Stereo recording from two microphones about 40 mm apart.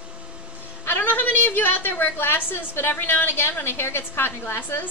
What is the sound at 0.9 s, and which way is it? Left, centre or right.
A woman's voice, left.